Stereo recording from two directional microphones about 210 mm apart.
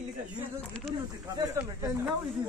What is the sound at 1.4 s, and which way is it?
Speech, 15° right (ahead or behind).